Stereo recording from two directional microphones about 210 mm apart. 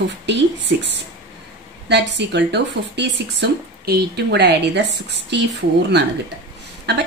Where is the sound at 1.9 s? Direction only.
55° right (ahead or behind).